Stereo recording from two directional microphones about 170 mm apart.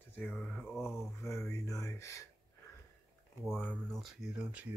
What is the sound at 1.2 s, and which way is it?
Speech, 15° left (ahead or behind).